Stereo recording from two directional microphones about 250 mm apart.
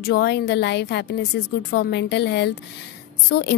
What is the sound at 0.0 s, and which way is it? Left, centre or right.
A woman's voice, left.